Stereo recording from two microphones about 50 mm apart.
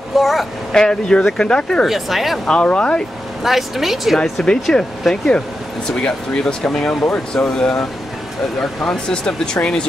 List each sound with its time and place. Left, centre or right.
0.2 s speech: centre
0.7 s speech: centre
1.9 s speech: centre
2.4 s speech: left
3.4 s speech: centre
4.6 s speech: centre